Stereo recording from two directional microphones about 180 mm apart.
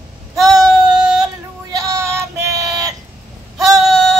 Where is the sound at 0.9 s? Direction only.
5° right (ahead or behind).